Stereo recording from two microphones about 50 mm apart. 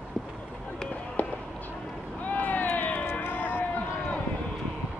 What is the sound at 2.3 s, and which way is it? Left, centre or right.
Vehicle, left.